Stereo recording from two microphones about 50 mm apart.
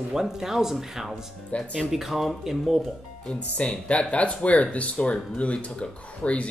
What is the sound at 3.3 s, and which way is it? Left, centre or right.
Speech, left.